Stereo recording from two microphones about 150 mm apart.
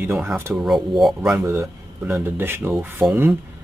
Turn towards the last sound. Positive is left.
turn(degrees=-15)  # may be behind; listen again after turning